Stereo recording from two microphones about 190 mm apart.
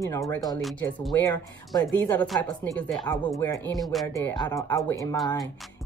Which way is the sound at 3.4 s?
15° left (ahead or behind).